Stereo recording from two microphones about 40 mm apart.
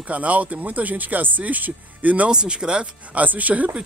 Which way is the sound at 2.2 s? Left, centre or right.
Right.